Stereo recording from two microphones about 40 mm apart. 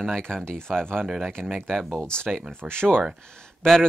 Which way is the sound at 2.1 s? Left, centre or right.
Left.